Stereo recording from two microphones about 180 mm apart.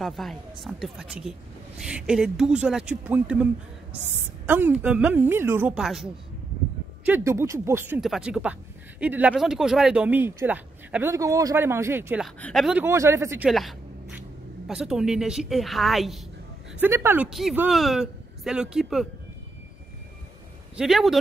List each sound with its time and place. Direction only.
0.0 s speech: centre (ahead or behind)
7.1 s speech: 15° right (ahead or behind)
12.4 s speech: 5° left (ahead or behind)
12.8 s speech: 15° right (ahead or behind)
13.5 s speech: centre (ahead or behind)
16.8 s speech: 10° right (ahead or behind)
17.3 s speech: centre (ahead or behind)
20.7 s speech: centre (ahead or behind)